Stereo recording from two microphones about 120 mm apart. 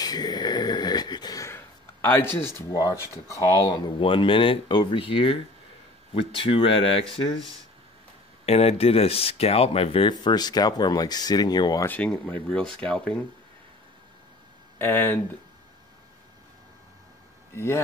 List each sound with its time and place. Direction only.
0.0 s a sound: 35° left (ahead or behind); by 2.5 s 20° left (ahead or behind)
2.7 s speech: 30° left (ahead or behind); by 7.1 s 50° left (ahead or behind)
8.5 s speech: 60° left (ahead or behind); by 11.8 s 35° left (ahead or behind)
11.8 s speech: 10° left (ahead or behind)
14.8 s speech: 15° left (ahead or behind)
17.6 s speech: 20° left (ahead or behind)